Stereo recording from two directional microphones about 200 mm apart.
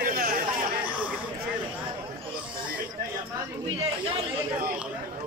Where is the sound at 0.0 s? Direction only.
45° right (ahead or behind).